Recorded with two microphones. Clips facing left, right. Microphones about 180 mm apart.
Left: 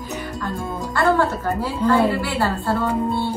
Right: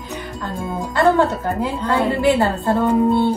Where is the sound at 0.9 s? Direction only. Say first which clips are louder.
Right 3 dB; 20° right (ahead or behind).